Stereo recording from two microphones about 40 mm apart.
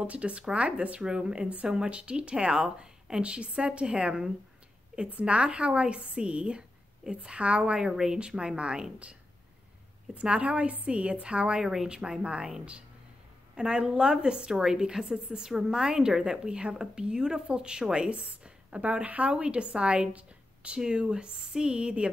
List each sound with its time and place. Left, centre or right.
0.0 s a woman's voice: right
10.1 s a woman's voice: right
11.6 s speech: centre
11.9 s a woman's voice: right